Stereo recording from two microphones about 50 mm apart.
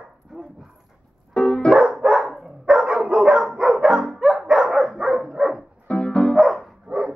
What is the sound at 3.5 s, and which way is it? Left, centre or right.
Music, centre.